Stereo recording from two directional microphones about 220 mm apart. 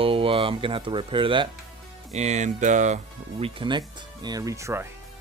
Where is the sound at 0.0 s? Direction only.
25° right (ahead or behind).